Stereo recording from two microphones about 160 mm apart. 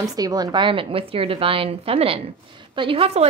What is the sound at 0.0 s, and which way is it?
A woman's voice, 25° right (ahead or behind).